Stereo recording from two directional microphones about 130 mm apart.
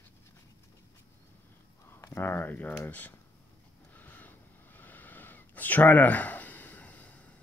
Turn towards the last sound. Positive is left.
turn(degrees=10)  # may be behind; listen again after turning